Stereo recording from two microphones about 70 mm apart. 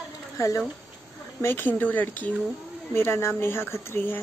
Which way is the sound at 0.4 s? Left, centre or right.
Left.